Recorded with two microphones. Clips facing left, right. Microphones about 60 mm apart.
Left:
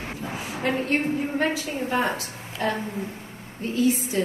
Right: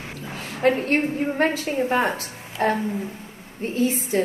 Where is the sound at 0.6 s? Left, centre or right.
Right.